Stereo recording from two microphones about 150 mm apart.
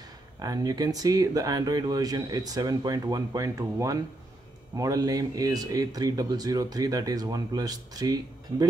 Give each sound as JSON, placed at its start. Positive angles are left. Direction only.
{"t": 0.4, "sound": "speech", "side_deg": -25}